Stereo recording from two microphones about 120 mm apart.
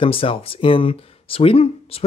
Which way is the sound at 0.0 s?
50° left (ahead or behind).